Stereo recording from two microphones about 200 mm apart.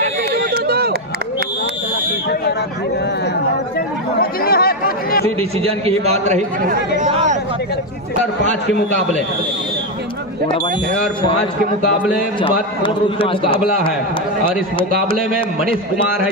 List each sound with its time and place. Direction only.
0.7 s run: 50° right (ahead or behind)
4.2 s chatter: 50° left (ahead or behind)
5.2 s a man's voice: 30° right (ahead or behind)
7.0 s chatter: 35° right (ahead or behind)
12.4 s a man's voice: 25° left (ahead or behind)
14.9 s a man's voice: 45° right (ahead or behind)